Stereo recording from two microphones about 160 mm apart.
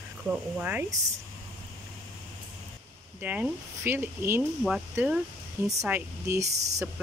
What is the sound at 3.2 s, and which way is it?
Speech, 10° right (ahead or behind).